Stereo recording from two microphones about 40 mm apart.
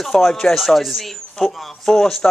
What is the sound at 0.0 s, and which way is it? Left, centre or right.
Speech, centre.